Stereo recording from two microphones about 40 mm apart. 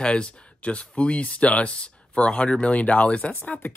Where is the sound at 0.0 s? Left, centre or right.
Left.